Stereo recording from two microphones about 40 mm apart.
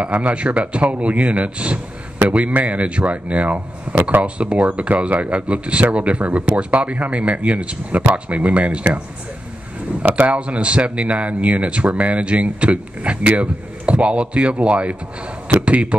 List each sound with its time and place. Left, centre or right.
0.0 s speech: right
10.0 s speech: right
10.3 s speech: right